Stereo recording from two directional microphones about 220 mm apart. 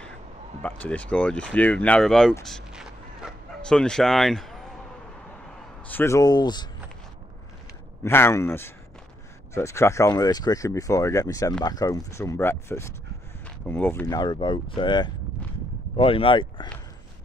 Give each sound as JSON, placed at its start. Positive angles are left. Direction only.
{"t": 0.6, "sound": "speech", "side_deg": 5}
{"t": 2.4, "sound": "bow-wow", "side_deg": 0}
{"t": 5.9, "sound": "speech", "side_deg": 10}
{"t": 8.0, "sound": "speech", "side_deg": 10}